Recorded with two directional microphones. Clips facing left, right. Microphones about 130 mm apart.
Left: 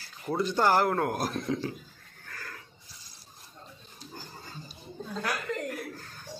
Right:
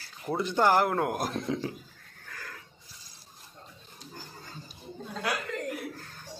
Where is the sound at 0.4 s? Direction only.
15° right (ahead or behind).